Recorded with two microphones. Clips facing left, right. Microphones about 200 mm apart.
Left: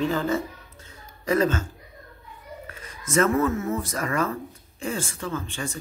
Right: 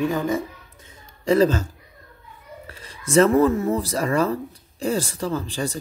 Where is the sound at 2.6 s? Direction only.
35° right (ahead or behind).